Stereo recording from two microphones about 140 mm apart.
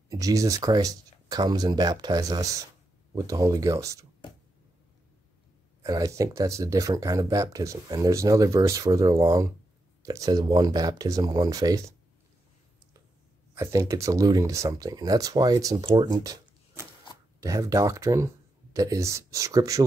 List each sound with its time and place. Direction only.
0.1 s speech: 25° right (ahead or behind)
5.8 s speech: 25° right (ahead or behind)
13.6 s speech: 20° right (ahead or behind)